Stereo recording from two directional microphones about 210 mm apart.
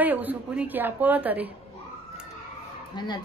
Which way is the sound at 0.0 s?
10° right (ahead or behind).